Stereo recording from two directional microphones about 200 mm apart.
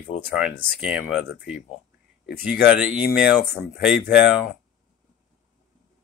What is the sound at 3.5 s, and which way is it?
Speech, 50° left (ahead or behind).